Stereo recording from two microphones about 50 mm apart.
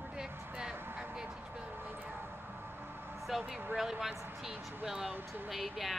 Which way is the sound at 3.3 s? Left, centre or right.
Centre.